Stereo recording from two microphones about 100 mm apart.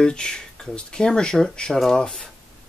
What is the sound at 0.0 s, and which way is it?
Speech, 10° left (ahead or behind).